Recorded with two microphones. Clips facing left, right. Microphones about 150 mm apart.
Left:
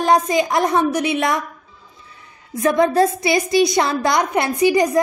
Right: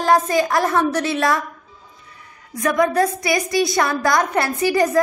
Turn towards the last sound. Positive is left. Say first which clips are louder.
# left 2 dB
turn(degrees=15)  # may be behind; listen again after turning